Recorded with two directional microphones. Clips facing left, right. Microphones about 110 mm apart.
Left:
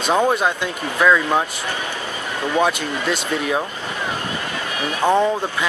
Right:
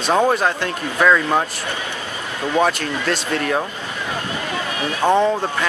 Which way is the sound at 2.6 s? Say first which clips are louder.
Right 1 dB; centre (ahead or behind).